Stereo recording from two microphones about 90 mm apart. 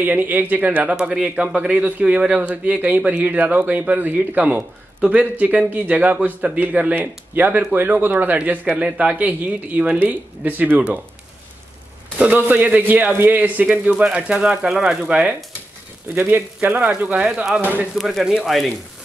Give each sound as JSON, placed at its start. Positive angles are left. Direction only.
{"t": 0.0, "sound": "speech", "side_deg": -20}
{"t": 12.2, "sound": "speech", "side_deg": -20}
{"t": 16.2, "sound": "speech", "side_deg": -25}
{"t": 17.9, "sound": "speech", "side_deg": 0}